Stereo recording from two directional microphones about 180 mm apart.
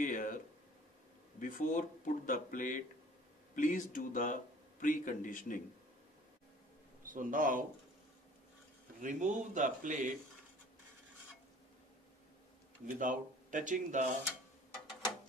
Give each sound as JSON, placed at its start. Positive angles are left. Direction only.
{"t": 0.0, "sound": "a sound", "side_deg": 50}
{"t": 1.4, "sound": "a man's voice", "side_deg": 45}
{"t": 7.1, "sound": "speech", "side_deg": -50}
{"t": 9.0, "sound": "speech", "side_deg": -45}
{"t": 12.9, "sound": "speech", "side_deg": -45}